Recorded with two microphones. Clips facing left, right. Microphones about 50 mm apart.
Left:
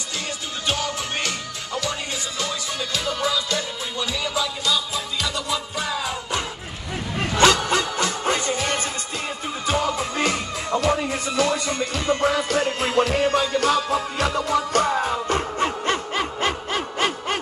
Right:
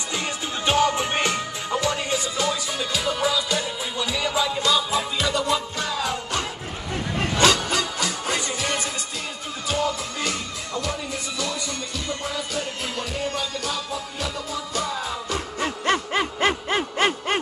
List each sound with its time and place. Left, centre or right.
0.7 s music: right
5.8 s music: centre
7.3 s music: left
9.7 s music: left
15.8 s a sound: centre